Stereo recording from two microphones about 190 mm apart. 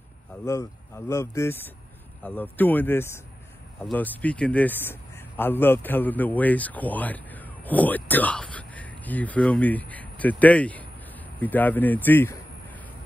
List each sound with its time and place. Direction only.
0.5 s a man's voice: 15° left (ahead or behind)